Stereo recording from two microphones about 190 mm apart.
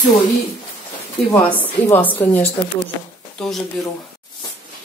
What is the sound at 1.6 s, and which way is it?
Speech, 10° left (ahead or behind).